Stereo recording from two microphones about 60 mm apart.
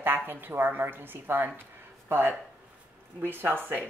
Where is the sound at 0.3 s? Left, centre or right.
Right.